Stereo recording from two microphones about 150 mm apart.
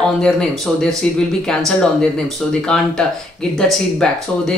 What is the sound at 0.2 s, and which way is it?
Speech, 5° left (ahead or behind).